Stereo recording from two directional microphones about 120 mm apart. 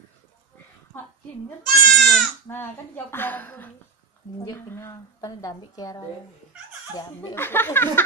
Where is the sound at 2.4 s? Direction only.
20° left (ahead or behind).